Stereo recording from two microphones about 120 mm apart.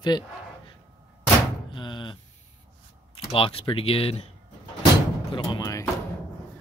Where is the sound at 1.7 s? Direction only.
40° left (ahead or behind).